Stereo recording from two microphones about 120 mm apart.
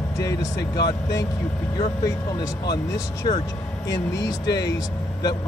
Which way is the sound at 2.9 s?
30° left (ahead or behind).